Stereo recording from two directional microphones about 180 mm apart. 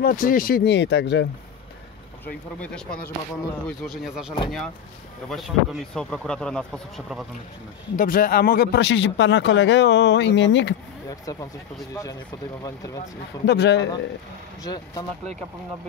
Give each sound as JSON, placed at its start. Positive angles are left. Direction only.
{"t": 0.0, "sound": "speech", "side_deg": 50}
{"t": 2.6, "sound": "speech", "side_deg": 5}
{"t": 5.3, "sound": "speech", "side_deg": 0}
{"t": 7.9, "sound": "speech", "side_deg": 50}
{"t": 11.1, "sound": "speech", "side_deg": 20}
{"t": 13.5, "sound": "speech", "side_deg": 70}
{"t": 14.6, "sound": "speech", "side_deg": 20}